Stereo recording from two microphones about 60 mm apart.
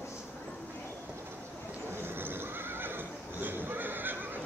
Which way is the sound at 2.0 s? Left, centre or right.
Right.